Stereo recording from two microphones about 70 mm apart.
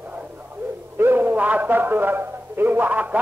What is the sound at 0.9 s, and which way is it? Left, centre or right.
A man's voice, right.